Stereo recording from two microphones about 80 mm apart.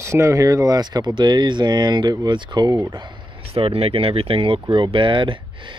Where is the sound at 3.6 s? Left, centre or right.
Right.